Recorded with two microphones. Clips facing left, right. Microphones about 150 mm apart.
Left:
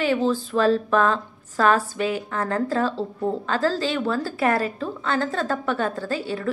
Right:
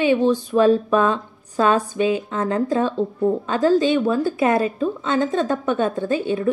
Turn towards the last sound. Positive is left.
turn(degrees=-20)  # may be behind; listen again after turning